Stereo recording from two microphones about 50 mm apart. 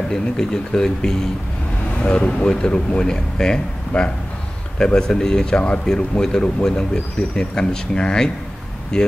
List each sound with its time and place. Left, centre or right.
0.1 s speech: centre
1.9 s speech: left